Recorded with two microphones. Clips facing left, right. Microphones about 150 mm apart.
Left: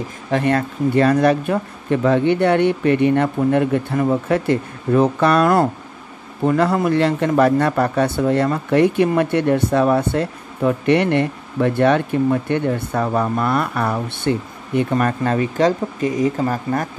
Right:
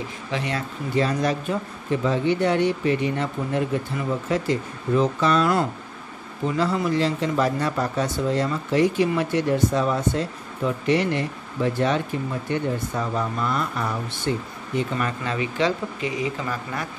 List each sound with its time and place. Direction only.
0.3 s speech: 55° left (ahead or behind)
14.8 s speech: 50° left (ahead or behind)